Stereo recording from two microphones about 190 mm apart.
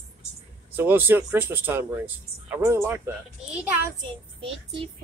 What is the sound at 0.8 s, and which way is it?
Speech, 10° right (ahead or behind).